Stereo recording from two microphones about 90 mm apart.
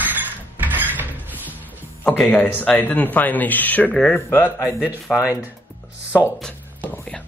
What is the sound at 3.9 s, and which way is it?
Speech, 5° left (ahead or behind).